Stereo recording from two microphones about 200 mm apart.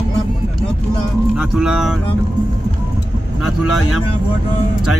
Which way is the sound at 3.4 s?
90° left.